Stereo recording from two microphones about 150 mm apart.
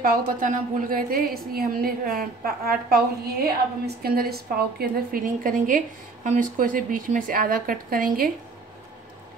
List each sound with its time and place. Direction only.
0.0 s a woman's voice: 70° right (ahead or behind)
3.4 s a woman's voice: 90° right